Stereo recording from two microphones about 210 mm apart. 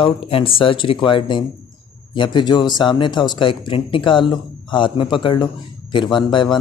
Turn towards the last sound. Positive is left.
turn(degrees=20)  # may be behind; listen again after turning